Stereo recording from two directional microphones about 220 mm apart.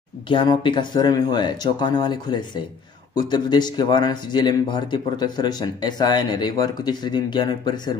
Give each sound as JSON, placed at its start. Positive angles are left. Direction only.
{"t": 0.3, "sound": "speech", "side_deg": 20}